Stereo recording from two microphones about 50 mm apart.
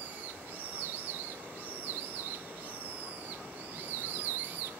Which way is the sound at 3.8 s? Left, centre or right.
Right.